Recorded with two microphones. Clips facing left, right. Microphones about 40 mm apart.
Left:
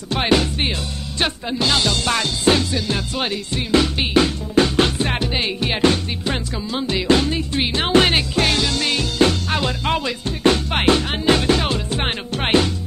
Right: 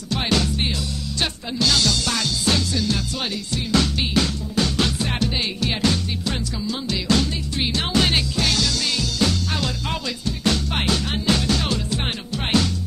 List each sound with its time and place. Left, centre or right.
0.1 s music: left